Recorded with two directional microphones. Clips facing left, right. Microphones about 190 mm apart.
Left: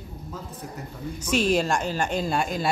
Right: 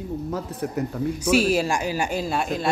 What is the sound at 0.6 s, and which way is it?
Speech, 65° right (ahead or behind).